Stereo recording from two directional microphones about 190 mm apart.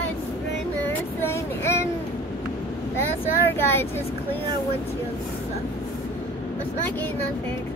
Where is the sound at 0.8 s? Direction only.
10° left (ahead or behind).